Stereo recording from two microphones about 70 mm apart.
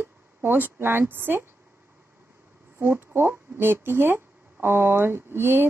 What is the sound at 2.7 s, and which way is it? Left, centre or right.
Speech, right.